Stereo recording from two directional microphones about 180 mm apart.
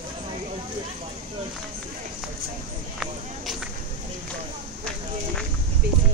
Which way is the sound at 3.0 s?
Centre (ahead or behind).